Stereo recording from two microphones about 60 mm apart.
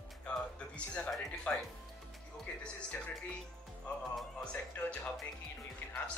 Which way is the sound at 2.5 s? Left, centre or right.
Left.